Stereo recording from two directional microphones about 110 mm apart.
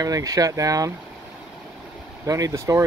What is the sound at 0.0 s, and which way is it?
Speech, 35° right (ahead or behind).